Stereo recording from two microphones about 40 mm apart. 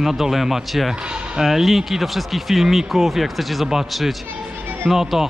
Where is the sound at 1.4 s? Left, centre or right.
Centre.